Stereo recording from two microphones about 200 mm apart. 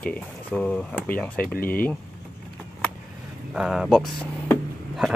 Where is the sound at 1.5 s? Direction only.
45° left (ahead or behind).